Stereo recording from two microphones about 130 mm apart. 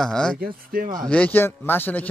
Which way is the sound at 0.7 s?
90° right.